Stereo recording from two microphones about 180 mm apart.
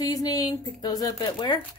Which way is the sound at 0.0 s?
20° left (ahead or behind).